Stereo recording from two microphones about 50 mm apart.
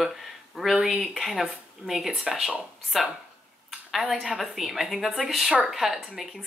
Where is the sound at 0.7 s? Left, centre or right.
Centre.